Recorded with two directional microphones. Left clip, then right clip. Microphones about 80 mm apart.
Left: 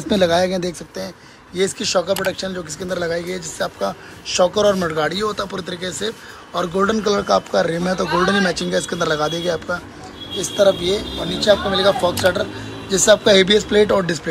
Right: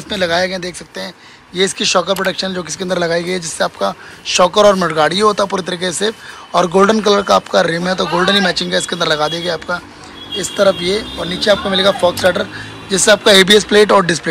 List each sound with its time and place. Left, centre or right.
0.1 s speech: left
1.5 s speech: centre
4.9 s a man's voice: centre
7.0 s speech: centre
10.6 s a man's voice: centre